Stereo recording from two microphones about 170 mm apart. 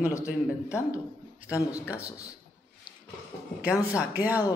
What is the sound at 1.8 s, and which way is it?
Speech, 10° right (ahead or behind).